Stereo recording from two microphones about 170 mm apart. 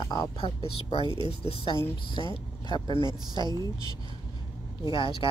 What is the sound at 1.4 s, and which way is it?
Speech, 35° left (ahead or behind).